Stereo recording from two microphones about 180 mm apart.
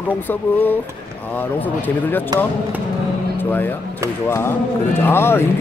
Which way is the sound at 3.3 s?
10° left (ahead or behind).